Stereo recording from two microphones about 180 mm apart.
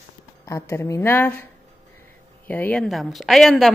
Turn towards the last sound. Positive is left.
turn(degrees=0)  # may be behind; listen again after turning